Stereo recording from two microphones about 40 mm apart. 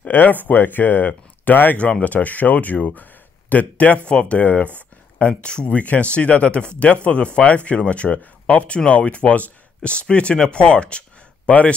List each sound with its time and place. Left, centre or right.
0.1 s speech: left
1.8 s speech: left
4.4 s speech: left
5.4 s speech: left
5.8 s speech: left
9.8 s speech: left